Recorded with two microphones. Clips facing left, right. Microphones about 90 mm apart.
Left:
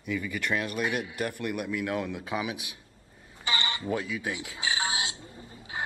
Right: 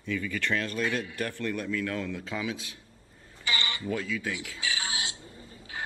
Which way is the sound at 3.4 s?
20° left (ahead or behind).